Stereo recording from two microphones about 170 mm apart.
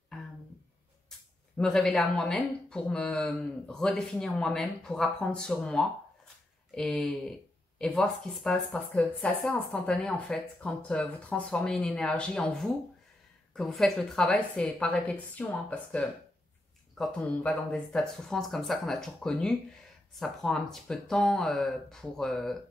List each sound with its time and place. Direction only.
1.6 s speech: 5° left (ahead or behind)